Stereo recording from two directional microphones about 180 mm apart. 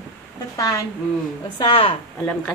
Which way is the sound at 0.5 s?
20° left (ahead or behind).